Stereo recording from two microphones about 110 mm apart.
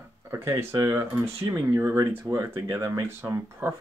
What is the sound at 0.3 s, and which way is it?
Speech, 25° right (ahead or behind).